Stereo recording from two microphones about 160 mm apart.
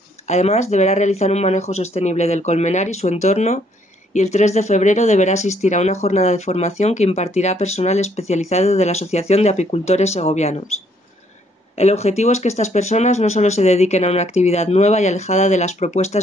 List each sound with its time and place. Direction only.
0.3 s speech: 45° left (ahead or behind)
11.7 s speech: 40° left (ahead or behind)